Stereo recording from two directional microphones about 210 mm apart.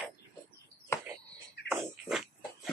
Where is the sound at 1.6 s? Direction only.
5° right (ahead or behind).